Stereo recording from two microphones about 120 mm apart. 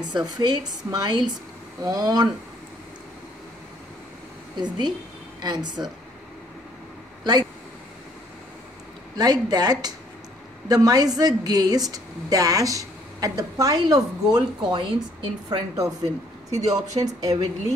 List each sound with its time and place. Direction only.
0.1 s a woman's voice: 35° right (ahead or behind)
4.6 s a woman's voice: 40° right (ahead or behind)
9.1 s a woman's voice: 35° right (ahead or behind)